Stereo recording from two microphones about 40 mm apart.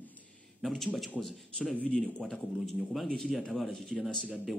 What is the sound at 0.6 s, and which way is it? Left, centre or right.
A man's voice, centre.